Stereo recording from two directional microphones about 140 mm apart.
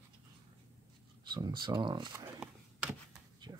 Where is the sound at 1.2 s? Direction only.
35° right (ahead or behind).